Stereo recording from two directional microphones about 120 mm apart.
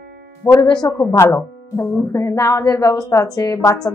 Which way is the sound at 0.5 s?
35° left (ahead or behind).